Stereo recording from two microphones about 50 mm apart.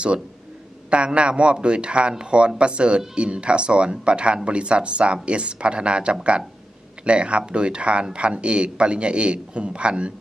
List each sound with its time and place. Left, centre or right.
0.8 s speech: right